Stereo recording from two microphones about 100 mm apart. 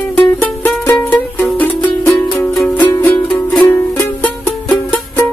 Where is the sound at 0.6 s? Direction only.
20° left (ahead or behind).